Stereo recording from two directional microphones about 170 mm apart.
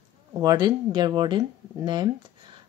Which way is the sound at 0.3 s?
20° right (ahead or behind).